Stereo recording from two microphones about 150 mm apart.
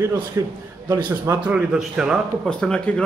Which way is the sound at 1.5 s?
5° right (ahead or behind).